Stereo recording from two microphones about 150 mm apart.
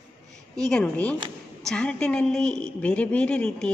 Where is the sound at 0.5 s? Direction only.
5° left (ahead or behind).